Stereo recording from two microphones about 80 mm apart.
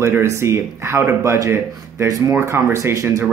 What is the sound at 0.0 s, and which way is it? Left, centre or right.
Speech, right.